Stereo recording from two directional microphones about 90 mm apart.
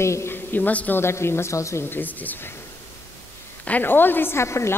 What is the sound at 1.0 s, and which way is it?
A woman's voice, 30° left (ahead or behind).